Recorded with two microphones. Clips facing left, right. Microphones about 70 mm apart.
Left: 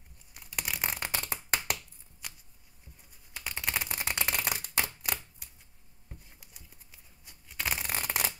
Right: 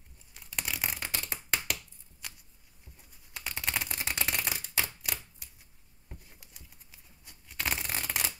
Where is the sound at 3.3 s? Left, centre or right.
Centre.